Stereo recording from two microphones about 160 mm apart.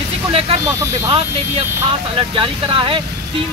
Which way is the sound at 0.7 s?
30° right (ahead or behind).